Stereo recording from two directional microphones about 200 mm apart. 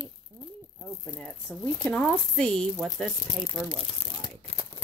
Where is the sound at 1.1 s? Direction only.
5° left (ahead or behind).